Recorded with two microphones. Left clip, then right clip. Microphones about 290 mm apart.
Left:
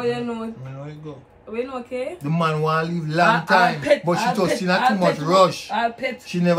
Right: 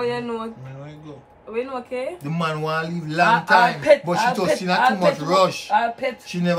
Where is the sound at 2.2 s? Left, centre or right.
Centre.